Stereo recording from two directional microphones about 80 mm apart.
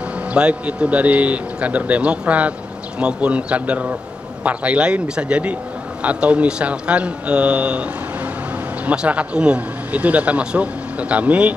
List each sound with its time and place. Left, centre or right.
0.3 s speech: centre
8.8 s speech: centre